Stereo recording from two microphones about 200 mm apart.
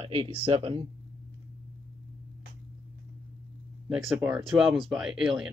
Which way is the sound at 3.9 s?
5° right (ahead or behind).